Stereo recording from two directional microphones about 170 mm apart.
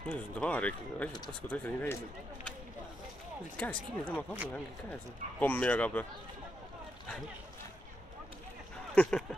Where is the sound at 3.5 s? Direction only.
10° left (ahead or behind).